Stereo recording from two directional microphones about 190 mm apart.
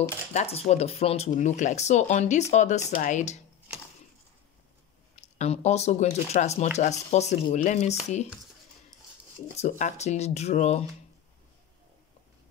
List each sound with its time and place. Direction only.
0.3 s speech: 35° left (ahead or behind)
5.1 s speech: 35° left (ahead or behind)
9.6 s speech: 40° left (ahead or behind)